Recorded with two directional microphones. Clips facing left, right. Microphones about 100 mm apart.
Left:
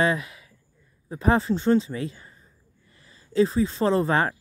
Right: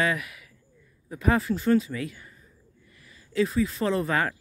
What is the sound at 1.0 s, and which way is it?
Speech, 30° left (ahead or behind).